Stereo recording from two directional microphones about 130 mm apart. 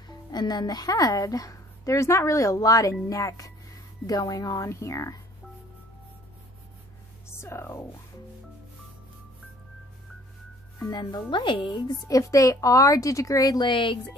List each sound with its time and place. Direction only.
0.1 s speech: 35° left (ahead or behind)
7.2 s speech: 20° left (ahead or behind)
10.8 s speech: 30° left (ahead or behind)
12.1 s speech: 25° left (ahead or behind)